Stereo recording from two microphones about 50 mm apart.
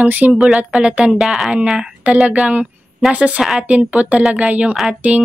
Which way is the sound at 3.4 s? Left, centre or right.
Centre.